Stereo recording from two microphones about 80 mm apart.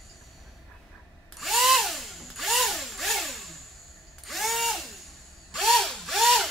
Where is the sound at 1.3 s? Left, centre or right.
Centre.